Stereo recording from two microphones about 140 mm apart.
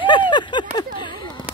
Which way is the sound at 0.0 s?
35° left (ahead or behind).